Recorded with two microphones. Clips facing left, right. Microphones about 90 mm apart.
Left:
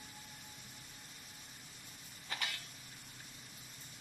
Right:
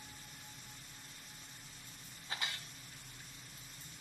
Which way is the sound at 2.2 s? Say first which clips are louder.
Even; 20° right (ahead or behind).